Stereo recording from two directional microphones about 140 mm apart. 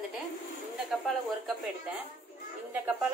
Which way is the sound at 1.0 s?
Centre (ahead or behind).